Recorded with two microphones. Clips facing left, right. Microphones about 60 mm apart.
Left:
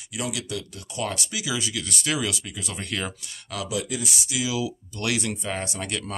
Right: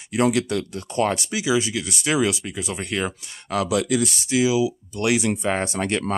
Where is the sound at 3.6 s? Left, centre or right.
Right.